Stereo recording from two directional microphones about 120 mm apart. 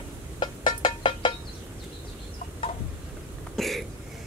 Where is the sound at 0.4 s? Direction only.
40° left (ahead or behind).